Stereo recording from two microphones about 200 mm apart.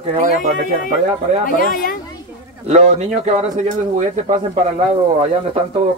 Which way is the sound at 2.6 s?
35° right (ahead or behind).